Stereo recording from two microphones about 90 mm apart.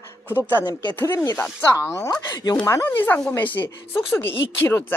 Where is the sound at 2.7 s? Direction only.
30° left (ahead or behind).